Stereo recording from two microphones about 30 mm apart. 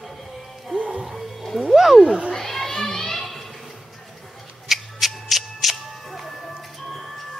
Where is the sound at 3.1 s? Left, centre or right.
Centre.